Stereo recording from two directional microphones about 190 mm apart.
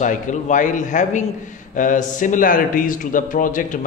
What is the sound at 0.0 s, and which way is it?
A man's voice, 40° left (ahead or behind).